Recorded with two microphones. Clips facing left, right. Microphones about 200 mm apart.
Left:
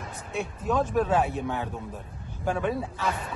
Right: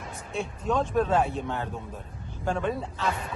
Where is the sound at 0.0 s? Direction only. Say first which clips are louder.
Even; centre (ahead or behind).